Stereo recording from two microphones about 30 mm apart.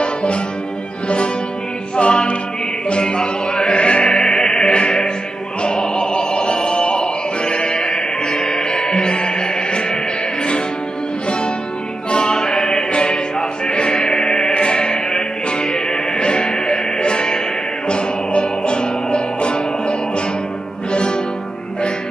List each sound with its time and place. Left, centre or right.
0.0 s music: left
12.1 s music: left